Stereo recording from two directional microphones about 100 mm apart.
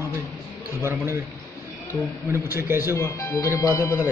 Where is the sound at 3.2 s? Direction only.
35° left (ahead or behind).